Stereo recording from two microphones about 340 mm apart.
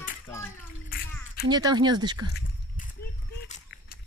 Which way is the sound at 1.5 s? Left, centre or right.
Centre.